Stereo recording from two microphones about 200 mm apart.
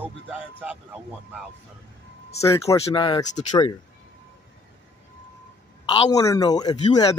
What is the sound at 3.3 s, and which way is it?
Speech, 35° left (ahead or behind).